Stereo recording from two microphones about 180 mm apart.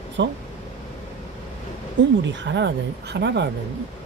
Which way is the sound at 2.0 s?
80° right.